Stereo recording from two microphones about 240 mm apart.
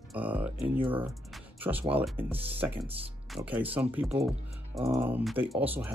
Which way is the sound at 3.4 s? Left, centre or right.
Centre.